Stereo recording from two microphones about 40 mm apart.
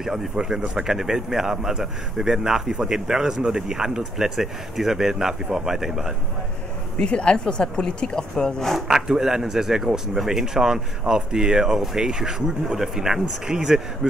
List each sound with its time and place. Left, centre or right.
0.0 s speech: centre
7.0 s speech: left
8.7 s speech: centre